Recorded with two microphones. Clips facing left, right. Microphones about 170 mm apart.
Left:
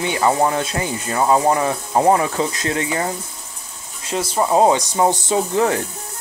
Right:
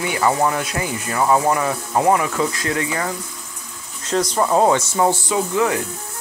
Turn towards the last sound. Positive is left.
turn(degrees=30)  # may be behind; listen again after turning